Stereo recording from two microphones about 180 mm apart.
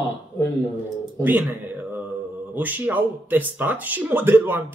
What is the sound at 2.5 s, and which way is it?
Speech, 10° right (ahead or behind).